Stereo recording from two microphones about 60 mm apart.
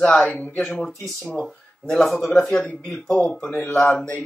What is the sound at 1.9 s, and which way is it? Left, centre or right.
Speech, centre.